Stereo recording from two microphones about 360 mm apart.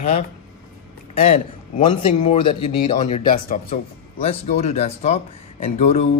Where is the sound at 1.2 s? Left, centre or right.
Centre.